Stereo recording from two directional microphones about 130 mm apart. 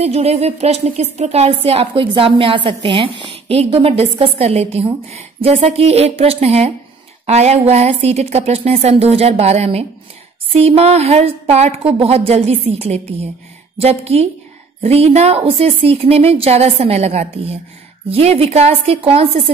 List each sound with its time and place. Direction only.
0.0 s a woman's voice: 55° right (ahead or behind)